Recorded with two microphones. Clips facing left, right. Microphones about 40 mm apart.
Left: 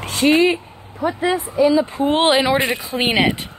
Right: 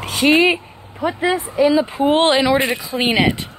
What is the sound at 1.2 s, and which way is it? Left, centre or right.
Speech, right.